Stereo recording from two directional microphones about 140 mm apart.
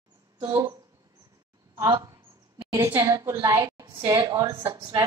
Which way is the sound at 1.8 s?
25° right (ahead or behind).